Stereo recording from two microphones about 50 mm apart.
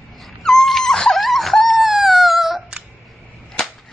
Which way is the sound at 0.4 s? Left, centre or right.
Centre.